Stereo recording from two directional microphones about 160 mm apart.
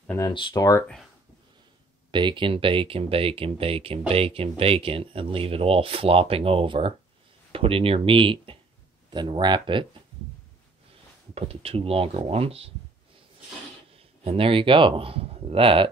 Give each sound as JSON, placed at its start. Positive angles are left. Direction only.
{"t": 0.2, "sound": "speech", "side_deg": 30}
{"t": 2.0, "sound": "speech", "side_deg": -30}
{"t": 11.3, "sound": "speech", "side_deg": -40}
{"t": 13.9, "sound": "speech", "side_deg": -35}